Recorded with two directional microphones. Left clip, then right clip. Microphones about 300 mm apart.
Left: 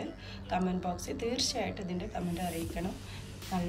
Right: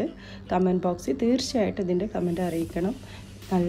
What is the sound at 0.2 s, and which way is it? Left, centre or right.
Speech, centre.